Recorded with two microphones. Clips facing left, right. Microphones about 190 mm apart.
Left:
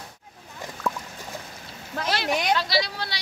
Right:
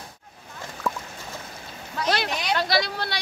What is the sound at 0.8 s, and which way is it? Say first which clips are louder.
Rodents: even; centre (ahead or behind).